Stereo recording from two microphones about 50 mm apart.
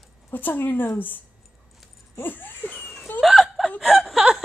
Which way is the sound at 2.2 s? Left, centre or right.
Left.